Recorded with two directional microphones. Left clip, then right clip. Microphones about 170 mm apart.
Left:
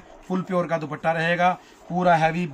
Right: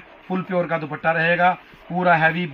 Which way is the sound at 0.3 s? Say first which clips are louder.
Right 2 dB; 10° left (ahead or behind).